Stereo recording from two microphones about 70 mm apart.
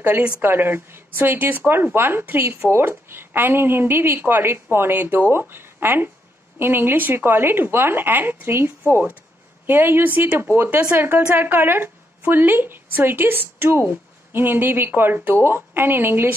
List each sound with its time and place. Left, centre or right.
0.4 s speech: right
8.8 s speech: right